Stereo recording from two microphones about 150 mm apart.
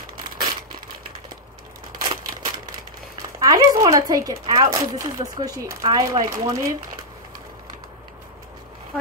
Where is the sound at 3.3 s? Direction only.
25° right (ahead or behind).